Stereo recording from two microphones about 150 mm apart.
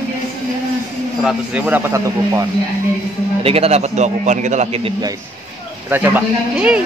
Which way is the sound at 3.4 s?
40° right (ahead or behind).